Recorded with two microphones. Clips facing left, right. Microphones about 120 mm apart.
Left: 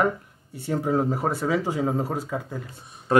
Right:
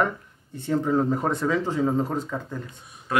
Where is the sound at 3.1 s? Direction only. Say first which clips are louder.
Left 5 dB; 35° left (ahead or behind).